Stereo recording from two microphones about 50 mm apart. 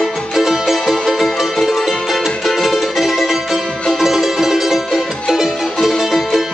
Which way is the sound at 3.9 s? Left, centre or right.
Centre.